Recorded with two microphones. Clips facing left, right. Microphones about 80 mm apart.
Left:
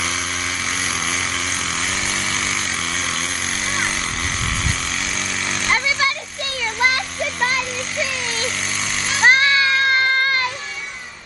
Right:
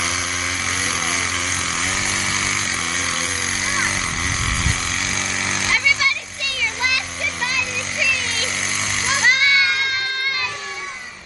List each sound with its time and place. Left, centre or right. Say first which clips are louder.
0.7 s vehicle: right 1 dB; centre
5.0 s a sound: right 1 dB; centre
5.7 s a sound: left 1 dB; left
8.1 s vehicle: even; centre
8.9 s jackhammer: right 4 dB; centre
9.2 s music: left 4 dB; left